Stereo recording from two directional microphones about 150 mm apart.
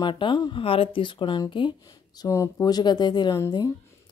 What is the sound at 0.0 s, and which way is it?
A woman's voice, 30° left (ahead or behind).